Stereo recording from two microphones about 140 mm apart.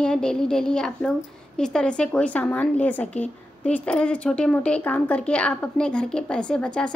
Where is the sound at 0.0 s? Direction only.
5° left (ahead or behind).